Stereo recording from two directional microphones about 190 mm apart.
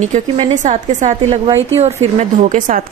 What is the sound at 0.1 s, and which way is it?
Speech, 40° right (ahead or behind).